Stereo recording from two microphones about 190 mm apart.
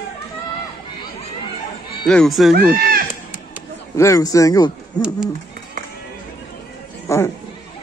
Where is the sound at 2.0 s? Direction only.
5° left (ahead or behind).